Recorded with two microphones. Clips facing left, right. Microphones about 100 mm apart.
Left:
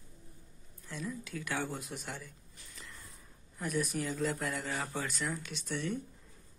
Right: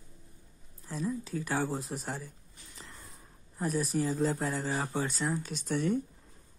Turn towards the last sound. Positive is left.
turn(degrees=-45)  # may be behind; listen again after turning